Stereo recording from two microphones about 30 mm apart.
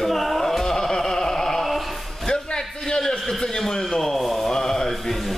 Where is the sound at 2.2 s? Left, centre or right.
Left.